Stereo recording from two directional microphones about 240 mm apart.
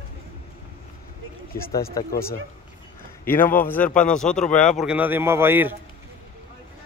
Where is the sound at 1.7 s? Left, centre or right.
Left.